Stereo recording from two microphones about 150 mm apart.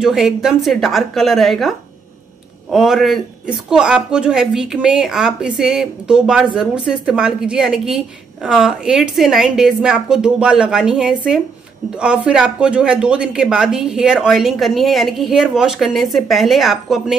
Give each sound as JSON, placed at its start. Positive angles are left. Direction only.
{"t": 0.0, "sound": "speech", "side_deg": -5}
{"t": 2.7, "sound": "speech", "side_deg": 0}